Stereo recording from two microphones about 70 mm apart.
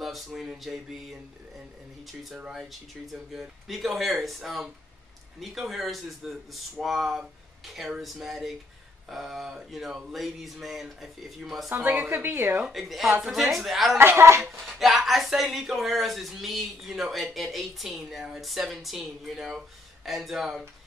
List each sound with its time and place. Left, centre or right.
0.0 s a sound: centre
3.3 s speech: centre
11.7 s a woman's voice: right
12.6 s speech: centre
13.1 s a woman's voice: centre
13.9 s speech: right
14.4 s speech: centre